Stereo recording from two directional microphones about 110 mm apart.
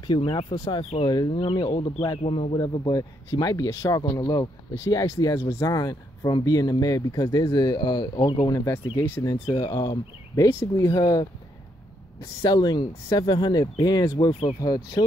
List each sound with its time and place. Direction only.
0.0 s speech: 45° left (ahead or behind); by 2.5 s 60° left (ahead or behind)
2.5 s speech: 40° left (ahead or behind)
8.5 s speech: 30° left (ahead or behind)